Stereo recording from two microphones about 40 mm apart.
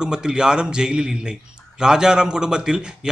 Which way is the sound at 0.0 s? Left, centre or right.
Centre.